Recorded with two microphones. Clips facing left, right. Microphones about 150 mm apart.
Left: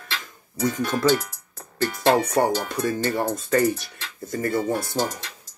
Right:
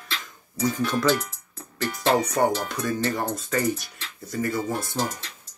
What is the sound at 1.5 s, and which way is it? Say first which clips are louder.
Music: left 4 dB; 45° left (ahead or behind).